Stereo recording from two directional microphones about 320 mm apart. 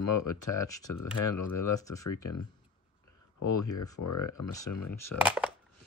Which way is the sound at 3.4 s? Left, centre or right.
Left.